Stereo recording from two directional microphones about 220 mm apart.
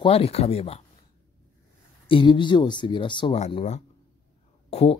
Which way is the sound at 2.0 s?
20° left (ahead or behind).